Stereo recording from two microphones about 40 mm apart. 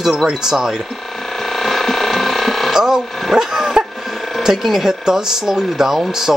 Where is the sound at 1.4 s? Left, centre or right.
Centre.